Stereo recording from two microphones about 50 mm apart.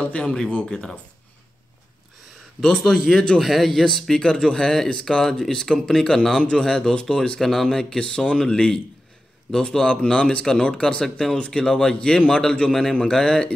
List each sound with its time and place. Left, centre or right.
0.0 s speech: left
2.8 s speech: centre
11.3 s speech: left